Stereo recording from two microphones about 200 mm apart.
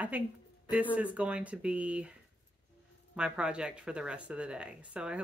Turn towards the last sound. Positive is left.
turn(degrees=-5)  # may be behind; listen again after turning